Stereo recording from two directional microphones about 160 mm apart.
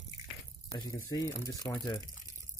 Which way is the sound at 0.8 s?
20° left (ahead or behind).